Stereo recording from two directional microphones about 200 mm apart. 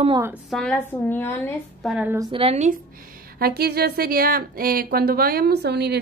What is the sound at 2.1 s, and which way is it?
Speech, 30° right (ahead or behind).